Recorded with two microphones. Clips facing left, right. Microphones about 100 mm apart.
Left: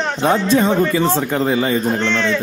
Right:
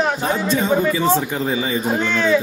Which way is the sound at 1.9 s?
5° right (ahead or behind).